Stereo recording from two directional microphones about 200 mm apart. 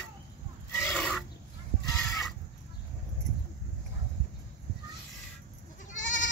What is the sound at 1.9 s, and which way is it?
Chicken, 15° left (ahead or behind).